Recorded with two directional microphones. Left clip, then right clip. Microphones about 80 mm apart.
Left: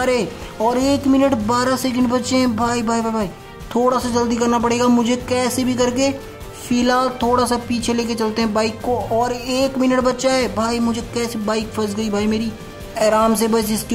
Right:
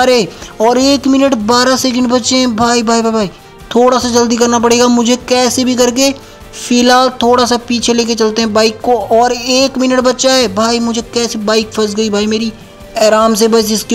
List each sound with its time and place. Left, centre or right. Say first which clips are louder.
0.0 s speech: right 9 dB; right